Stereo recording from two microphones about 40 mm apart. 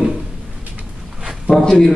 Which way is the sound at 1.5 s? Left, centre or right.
Centre.